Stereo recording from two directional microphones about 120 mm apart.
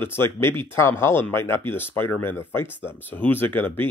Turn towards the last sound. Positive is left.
turn(degrees=15)  # may be behind; listen again after turning